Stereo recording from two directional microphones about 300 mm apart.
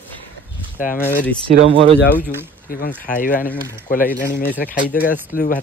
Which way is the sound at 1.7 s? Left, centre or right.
Centre.